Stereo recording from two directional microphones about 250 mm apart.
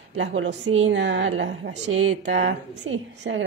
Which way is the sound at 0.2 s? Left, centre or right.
Right.